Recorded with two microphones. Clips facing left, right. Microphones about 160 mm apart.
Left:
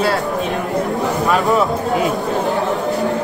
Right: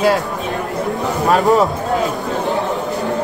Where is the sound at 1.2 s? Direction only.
40° right (ahead or behind).